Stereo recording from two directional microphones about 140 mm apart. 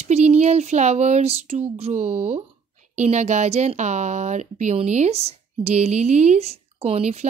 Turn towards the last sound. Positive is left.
turn(degrees=-50)  # may be behind; listen again after turning